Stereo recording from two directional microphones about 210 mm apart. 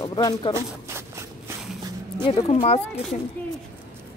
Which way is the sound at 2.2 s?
25° left (ahead or behind).